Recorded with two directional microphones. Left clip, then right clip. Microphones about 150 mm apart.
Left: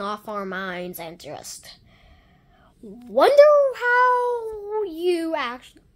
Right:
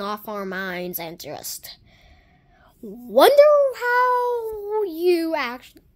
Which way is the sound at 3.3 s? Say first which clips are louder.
Left 4 dB; 10° right (ahead or behind).